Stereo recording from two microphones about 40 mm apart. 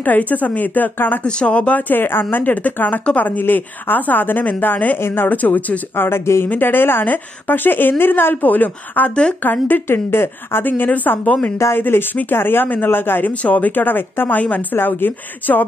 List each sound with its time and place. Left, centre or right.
0.0 s a woman's voice: left
1.2 s speech: left
1.9 s a woman's voice: left
2.5 s a woman's voice: left
5.0 s a woman's voice: left
5.3 s a woman's voice: left
5.9 s a woman's voice: left
10.6 s a woman's voice: left
11.7 s speech: left
12.3 s a woman's voice: left
13.4 s a woman's voice: left